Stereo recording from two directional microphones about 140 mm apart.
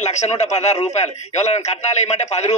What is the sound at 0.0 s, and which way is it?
A man's voice, 55° left (ahead or behind).